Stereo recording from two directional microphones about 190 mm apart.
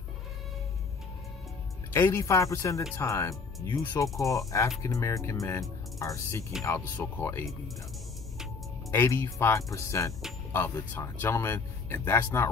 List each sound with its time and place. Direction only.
2.0 s speech: 15° left (ahead or behind)
8.9 s speech: 15° left (ahead or behind)